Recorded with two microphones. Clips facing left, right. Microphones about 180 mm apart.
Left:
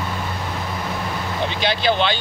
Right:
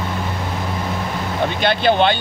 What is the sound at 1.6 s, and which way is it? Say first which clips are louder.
Speech: right 4 dB; 55° right (ahead or behind).